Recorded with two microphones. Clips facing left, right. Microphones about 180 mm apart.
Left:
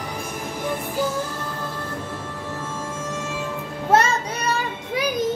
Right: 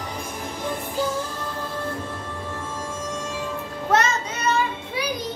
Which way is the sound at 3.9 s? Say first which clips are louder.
Left 3 dB; 35° left (ahead or behind).